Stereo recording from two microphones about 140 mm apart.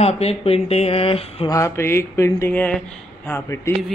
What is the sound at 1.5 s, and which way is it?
Speech, 20° left (ahead or behind).